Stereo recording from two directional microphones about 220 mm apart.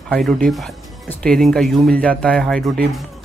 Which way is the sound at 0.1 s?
5° left (ahead or behind).